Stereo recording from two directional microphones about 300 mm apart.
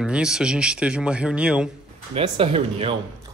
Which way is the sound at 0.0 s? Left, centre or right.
Centre.